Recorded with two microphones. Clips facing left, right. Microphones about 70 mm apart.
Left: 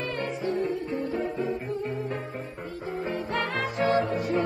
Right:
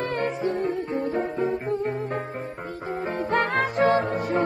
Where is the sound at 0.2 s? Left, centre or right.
Right.